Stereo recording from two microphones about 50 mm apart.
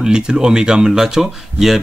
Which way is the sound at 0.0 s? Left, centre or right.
Centre.